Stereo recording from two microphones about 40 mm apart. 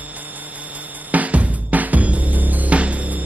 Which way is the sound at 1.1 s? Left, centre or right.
Right.